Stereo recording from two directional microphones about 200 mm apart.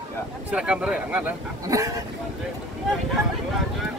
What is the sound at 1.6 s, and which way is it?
Speech, 15° right (ahead or behind).